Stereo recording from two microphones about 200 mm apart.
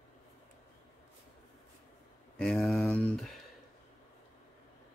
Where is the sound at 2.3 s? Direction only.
5° left (ahead or behind).